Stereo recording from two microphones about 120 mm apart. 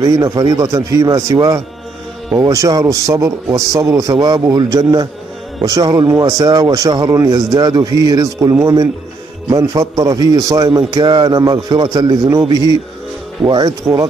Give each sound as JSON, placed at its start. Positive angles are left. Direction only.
{"t": 0.0, "sound": "a man's voice", "side_deg": -25}
{"t": 13.4, "sound": "a man's voice", "side_deg": -35}